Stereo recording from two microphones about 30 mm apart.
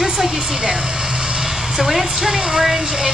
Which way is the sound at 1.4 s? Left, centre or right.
Centre.